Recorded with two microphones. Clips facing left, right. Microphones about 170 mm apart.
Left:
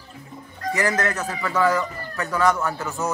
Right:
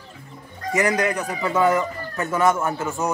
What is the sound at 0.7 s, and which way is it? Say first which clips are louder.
A man's voice: right 3 dB; 15° right (ahead or behind).